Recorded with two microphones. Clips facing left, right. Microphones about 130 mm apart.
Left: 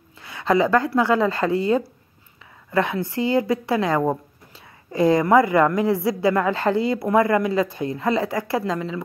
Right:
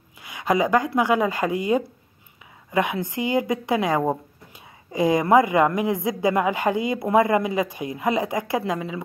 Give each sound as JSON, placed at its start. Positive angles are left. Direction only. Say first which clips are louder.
{"t": 0.2, "sound": "a woman's voice", "louder": "left 2 dB", "side_deg": -15}